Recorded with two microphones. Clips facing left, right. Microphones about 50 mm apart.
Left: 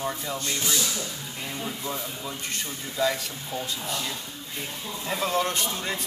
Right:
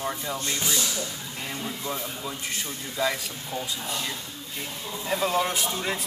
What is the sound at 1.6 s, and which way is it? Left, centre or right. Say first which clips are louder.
Speech: even; centre.